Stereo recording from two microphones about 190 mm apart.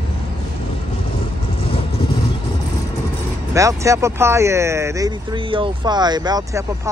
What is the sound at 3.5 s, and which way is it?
Speech, 15° right (ahead or behind).